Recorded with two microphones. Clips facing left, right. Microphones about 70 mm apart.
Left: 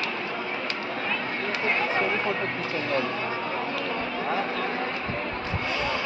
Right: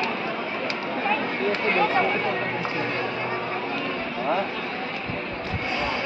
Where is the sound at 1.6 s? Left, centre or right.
Centre.